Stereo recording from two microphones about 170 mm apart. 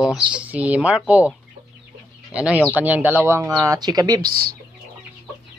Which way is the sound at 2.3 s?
5° right (ahead or behind).